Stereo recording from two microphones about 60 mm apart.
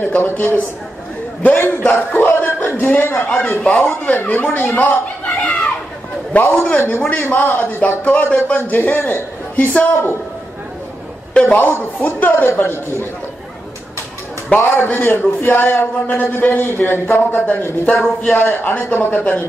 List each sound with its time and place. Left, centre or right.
0.0 s a man's voice: left
1.9 s music: left
2.8 s a man's voice: left
11.3 s a man's voice: left
14.5 s a man's voice: left